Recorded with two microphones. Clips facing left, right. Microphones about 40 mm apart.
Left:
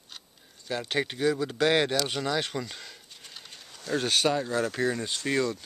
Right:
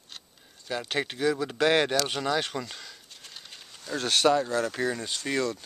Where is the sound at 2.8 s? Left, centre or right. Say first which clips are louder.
Even; centre.